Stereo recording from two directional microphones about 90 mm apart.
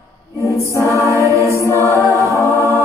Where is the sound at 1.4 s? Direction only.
30° left (ahead or behind).